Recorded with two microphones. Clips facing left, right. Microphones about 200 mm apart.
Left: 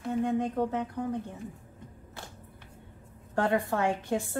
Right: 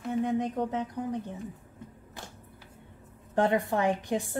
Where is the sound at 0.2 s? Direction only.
15° right (ahead or behind).